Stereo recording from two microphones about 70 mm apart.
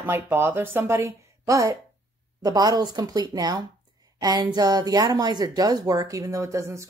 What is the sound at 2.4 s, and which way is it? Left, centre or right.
A woman's voice, right.